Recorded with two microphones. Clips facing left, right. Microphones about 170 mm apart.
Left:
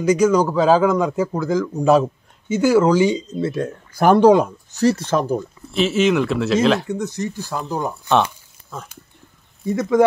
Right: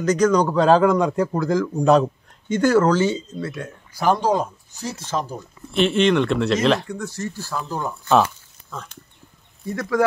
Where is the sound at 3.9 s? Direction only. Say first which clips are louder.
Left 7 dB; 55° left (ahead or behind).